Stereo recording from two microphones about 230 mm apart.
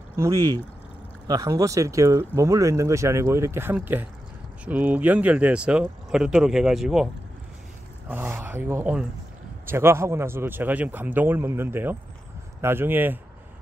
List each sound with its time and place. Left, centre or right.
0.1 s speech: centre
8.1 s speech: centre